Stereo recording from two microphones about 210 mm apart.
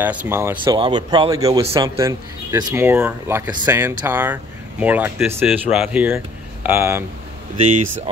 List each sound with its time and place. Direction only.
0.0 s speech: 5° right (ahead or behind)
0.7 s speech: 25° right (ahead or behind)